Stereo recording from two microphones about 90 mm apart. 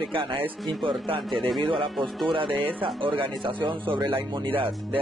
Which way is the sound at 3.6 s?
65° right (ahead or behind).